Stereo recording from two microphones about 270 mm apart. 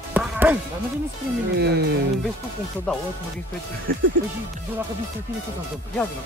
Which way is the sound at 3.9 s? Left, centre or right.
Right.